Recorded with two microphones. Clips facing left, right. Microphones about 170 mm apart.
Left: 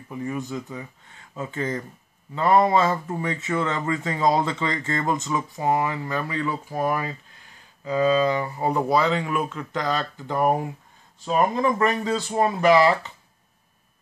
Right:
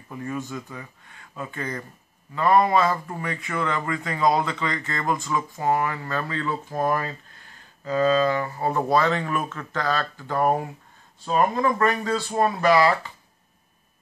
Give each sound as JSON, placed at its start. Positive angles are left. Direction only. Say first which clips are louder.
{"t": 0.2, "sound": "speech", "louder": "left 2 dB", "side_deg": 20}